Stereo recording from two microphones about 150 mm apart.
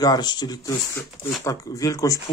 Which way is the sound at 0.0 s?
30° left (ahead or behind).